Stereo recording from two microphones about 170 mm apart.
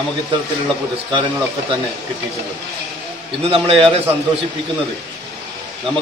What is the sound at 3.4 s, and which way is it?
Speech, 35° right (ahead or behind).